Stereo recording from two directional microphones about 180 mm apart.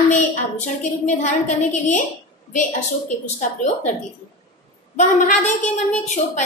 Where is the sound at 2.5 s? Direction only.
40° left (ahead or behind).